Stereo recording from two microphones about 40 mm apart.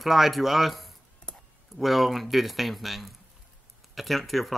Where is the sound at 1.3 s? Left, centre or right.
Left.